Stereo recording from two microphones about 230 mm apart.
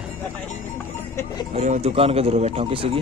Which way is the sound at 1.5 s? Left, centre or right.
Right.